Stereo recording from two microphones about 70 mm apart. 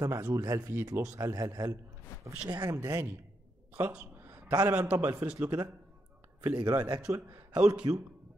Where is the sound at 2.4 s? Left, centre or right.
Right.